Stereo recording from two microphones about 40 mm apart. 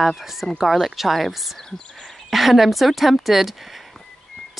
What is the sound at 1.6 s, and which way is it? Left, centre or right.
Whispering, centre.